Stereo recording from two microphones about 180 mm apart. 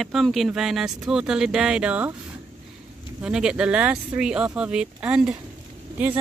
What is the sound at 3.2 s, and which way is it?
Speech, 5° right (ahead or behind).